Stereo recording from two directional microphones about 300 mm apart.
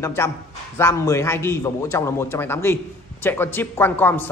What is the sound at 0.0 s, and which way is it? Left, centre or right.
A man's voice, centre.